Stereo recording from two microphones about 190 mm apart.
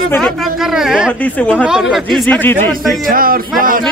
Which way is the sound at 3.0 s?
50° right (ahead or behind).